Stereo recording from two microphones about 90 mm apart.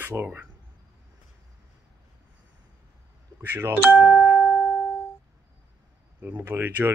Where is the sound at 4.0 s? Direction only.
10° right (ahead or behind).